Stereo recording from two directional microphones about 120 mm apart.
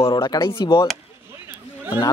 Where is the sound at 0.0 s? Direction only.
40° left (ahead or behind).